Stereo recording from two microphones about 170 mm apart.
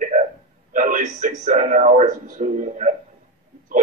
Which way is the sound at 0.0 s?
40° right (ahead or behind).